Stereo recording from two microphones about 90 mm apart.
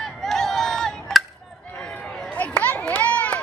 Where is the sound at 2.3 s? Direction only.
15° left (ahead or behind).